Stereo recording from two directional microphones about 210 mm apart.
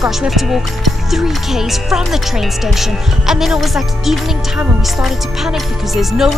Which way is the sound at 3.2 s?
Centre (ahead or behind).